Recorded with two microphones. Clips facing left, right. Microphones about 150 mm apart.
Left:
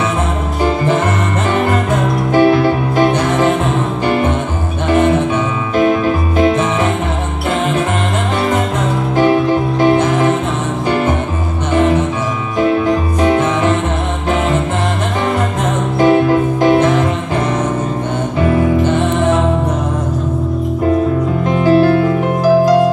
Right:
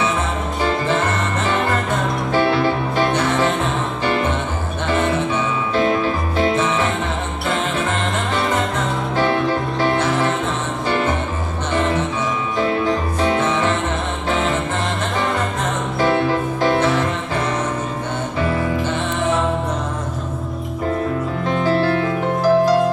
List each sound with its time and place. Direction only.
2.3 s music: 15° left (ahead or behind)
5.8 s music: 15° left (ahead or behind)
9.1 s music: 15° left (ahead or behind)
13.2 s music: 15° left (ahead or behind)
16.0 s music: 15° left (ahead or behind)
21.5 s music: 15° left (ahead or behind)